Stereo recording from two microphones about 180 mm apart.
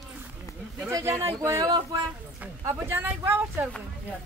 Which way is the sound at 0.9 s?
15° right (ahead or behind).